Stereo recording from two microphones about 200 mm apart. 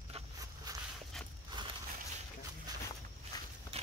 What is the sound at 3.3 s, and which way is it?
Walk, 20° left (ahead or behind).